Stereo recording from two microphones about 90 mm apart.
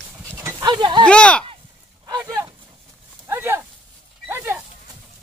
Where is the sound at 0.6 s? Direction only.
55° right (ahead or behind).